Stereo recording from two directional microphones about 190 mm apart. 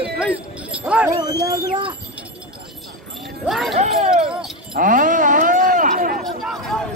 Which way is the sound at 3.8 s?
35° right (ahead or behind).